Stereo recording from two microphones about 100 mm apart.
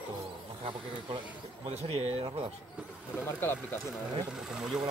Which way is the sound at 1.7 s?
90° right.